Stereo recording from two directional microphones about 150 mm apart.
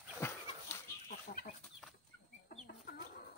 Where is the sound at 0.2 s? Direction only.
15° left (ahead or behind).